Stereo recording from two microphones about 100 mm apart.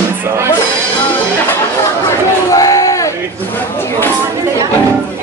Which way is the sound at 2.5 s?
35° left (ahead or behind).